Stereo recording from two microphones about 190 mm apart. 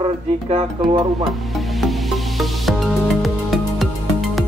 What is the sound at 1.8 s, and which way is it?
Music, centre (ahead or behind).